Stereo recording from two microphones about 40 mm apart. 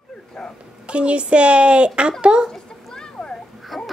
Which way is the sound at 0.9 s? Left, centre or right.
Right.